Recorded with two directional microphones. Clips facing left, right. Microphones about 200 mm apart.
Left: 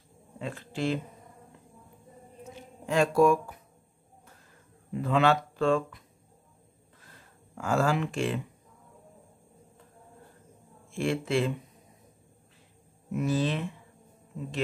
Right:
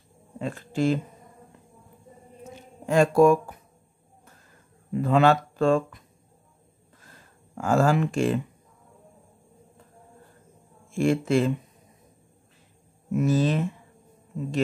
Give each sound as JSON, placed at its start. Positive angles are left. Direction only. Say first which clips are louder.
{"t": 0.4, "sound": "speech", "louder": "right 6 dB", "side_deg": -45}
{"t": 2.9, "sound": "speech", "louder": "right 4 dB", "side_deg": -45}
{"t": 5.0, "sound": "speech", "louder": "right 4 dB", "side_deg": -45}
{"t": 7.5, "sound": "speech", "louder": "right 5 dB", "side_deg": -45}
{"t": 11.0, "sound": "speech", "louder": "right 6 dB", "side_deg": -45}
{"t": 13.1, "sound": "speech", "louder": "right 5 dB", "side_deg": -45}